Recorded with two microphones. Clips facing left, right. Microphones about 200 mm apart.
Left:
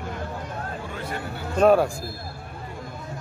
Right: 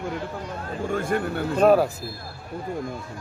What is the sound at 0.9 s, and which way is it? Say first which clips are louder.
Speech: right 8 dB; 50° right (ahead or behind).